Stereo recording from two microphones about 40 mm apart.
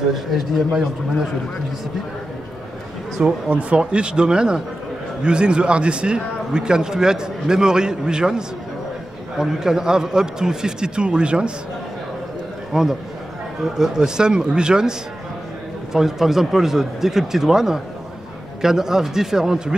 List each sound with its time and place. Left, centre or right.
0.1 s speech: centre
3.4 s speech: right
3.8 s a man's voice: right
12.7 s a man's voice: centre